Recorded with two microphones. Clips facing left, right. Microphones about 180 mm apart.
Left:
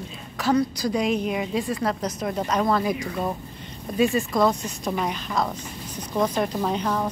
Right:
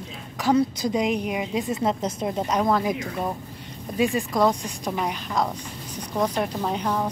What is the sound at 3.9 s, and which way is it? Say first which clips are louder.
A woman's voice: left 1 dB; 15° right (ahead or behind).